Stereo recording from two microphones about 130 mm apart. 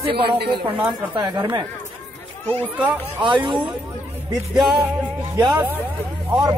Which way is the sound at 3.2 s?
40° right (ahead or behind).